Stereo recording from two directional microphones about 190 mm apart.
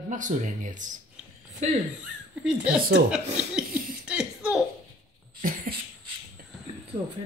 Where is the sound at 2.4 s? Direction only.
5° right (ahead or behind).